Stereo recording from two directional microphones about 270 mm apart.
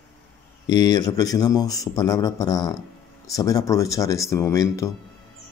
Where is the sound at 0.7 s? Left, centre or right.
Centre.